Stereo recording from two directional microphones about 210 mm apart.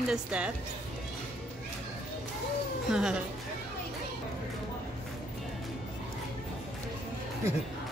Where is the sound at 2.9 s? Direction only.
5° right (ahead or behind).